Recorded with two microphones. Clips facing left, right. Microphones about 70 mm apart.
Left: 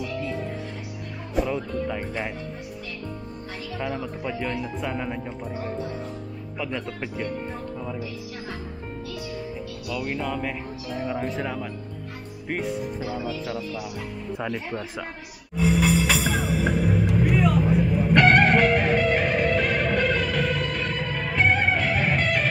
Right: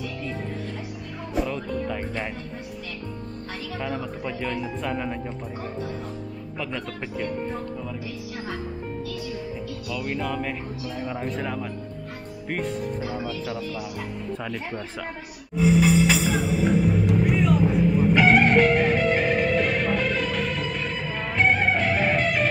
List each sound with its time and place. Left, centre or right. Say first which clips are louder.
1.5 s speech: left 1 dB; centre
3.8 s a man's voice: left 1 dB; centre
6.9 s speech: even; centre
9.8 s a man's voice: even; centre
14.4 s speech: left 2 dB; centre
15.0 s music: right 3 dB; centre